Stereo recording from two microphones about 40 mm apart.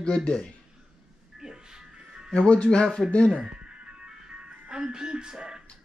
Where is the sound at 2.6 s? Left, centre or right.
Left.